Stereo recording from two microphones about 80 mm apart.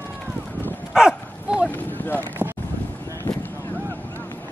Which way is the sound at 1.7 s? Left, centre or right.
Left.